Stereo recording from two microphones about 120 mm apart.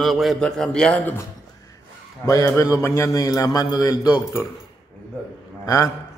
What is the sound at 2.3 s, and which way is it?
A man's voice, 25° left (ahead or behind).